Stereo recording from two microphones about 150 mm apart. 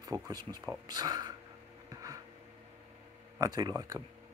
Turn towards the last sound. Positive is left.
turn(degrees=-25)  # may be behind; listen again after turning